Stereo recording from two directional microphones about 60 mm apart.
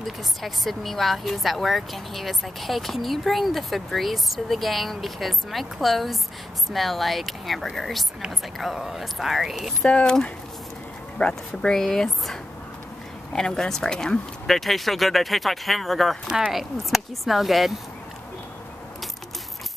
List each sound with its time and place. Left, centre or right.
0.0 s speech: centre
9.8 s speech: centre
11.1 s speech: centre